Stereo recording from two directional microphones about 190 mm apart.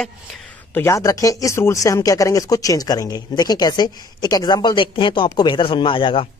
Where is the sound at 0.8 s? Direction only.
15° left (ahead or behind).